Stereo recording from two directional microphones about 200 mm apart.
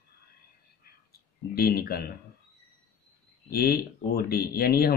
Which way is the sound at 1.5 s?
50° left (ahead or behind).